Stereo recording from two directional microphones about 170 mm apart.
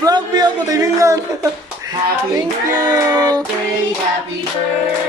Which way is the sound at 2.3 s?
20° right (ahead or behind).